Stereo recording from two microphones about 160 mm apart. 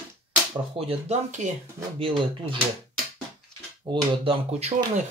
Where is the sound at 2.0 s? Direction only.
35° right (ahead or behind).